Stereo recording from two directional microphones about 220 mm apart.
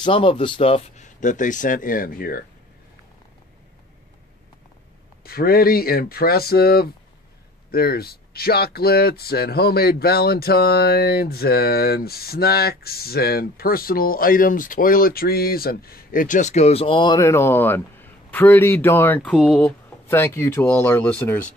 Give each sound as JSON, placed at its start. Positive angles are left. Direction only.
{"t": 0.0, "sound": "speech", "side_deg": 25}
{"t": 5.2, "sound": "speech", "side_deg": 45}